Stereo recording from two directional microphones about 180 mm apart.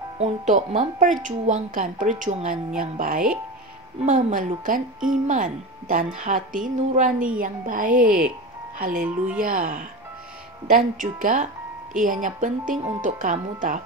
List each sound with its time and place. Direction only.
0.2 s a woman's voice: 40° right (ahead or behind)